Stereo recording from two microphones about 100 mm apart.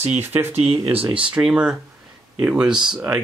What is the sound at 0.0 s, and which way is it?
Speech, 20° right (ahead or behind).